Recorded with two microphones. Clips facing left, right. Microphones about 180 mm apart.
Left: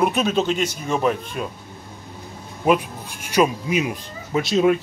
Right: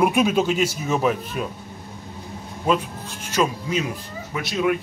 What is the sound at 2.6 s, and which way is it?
Speech, 15° left (ahead or behind).